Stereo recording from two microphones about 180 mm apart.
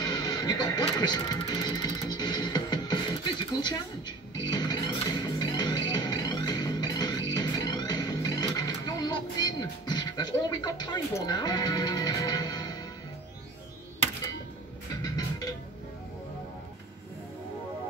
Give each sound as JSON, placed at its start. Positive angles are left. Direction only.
{"t": 0.0, "sound": "music", "side_deg": 20}
{"t": 4.4, "sound": "music", "side_deg": 25}
{"t": 15.0, "sound": "music", "side_deg": 20}